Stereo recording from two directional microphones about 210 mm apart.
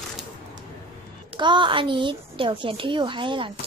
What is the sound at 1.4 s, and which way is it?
A woman's voice, 20° right (ahead or behind).